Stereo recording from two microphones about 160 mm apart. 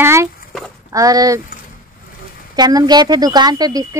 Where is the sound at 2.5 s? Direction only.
25° right (ahead or behind).